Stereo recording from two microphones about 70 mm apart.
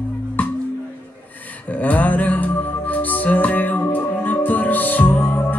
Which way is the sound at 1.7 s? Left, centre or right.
Left.